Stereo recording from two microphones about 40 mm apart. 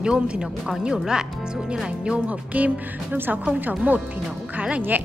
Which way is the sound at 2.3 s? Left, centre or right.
Right.